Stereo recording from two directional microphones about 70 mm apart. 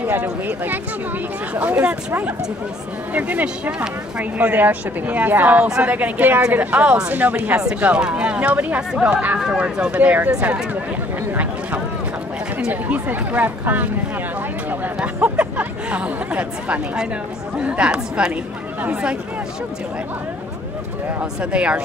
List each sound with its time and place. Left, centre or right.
0.0 s speech: right
12.5 s speech: right
15.0 s a woman's voice: centre
21.4 s a woman's voice: centre